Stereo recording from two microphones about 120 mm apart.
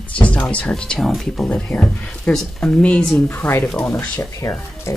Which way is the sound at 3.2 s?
20° left (ahead or behind).